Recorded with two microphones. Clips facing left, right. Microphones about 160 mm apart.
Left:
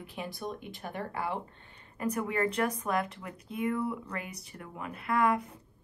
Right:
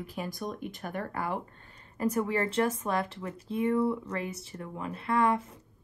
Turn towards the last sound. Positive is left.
turn(degrees=-30)  # may be behind; listen again after turning